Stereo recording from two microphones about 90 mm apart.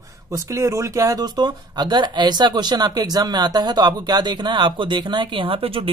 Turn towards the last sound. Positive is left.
turn(degrees=-85)